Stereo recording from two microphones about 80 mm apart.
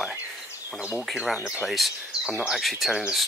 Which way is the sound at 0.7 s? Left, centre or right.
Centre.